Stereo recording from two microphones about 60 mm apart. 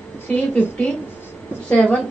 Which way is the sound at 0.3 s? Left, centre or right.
Left.